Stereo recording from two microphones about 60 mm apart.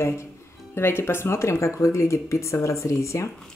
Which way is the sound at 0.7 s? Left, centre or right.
Left.